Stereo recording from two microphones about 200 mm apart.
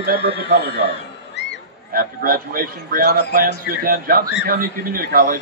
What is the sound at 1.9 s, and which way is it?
A man's voice, 45° right (ahead or behind).